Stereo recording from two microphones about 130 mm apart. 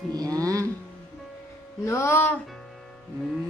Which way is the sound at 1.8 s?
20° left (ahead or behind).